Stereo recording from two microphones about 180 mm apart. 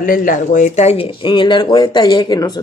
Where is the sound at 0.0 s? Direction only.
50° left (ahead or behind).